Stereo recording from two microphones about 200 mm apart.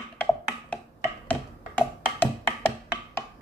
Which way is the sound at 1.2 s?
10° left (ahead or behind).